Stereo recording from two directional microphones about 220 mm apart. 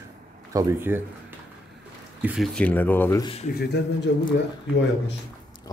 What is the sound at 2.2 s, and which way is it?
Speech, centre (ahead or behind).